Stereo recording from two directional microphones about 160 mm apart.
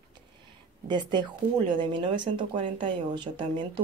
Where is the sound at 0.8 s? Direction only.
30° right (ahead or behind).